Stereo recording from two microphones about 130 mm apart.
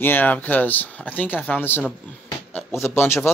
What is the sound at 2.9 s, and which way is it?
Speech, 20° left (ahead or behind).